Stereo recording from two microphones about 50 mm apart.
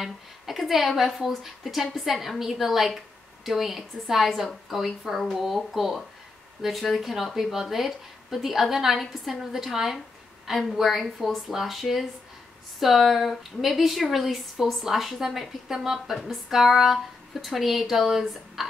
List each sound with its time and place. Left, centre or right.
0.0 s a woman's voice: centre